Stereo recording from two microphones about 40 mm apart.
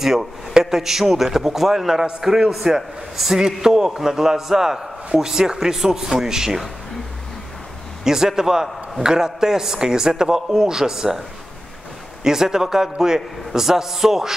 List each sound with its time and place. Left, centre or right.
0.0 s a man's voice: centre
8.0 s a man's voice: centre
12.2 s a man's voice: centre